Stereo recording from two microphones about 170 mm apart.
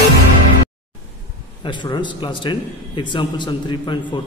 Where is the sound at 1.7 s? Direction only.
25° left (ahead or behind).